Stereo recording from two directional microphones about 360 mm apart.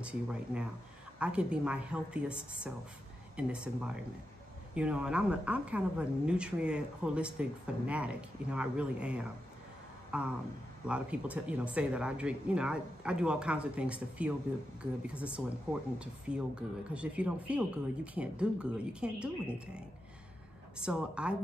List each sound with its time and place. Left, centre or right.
0.0 s speech: centre
20.7 s speech: centre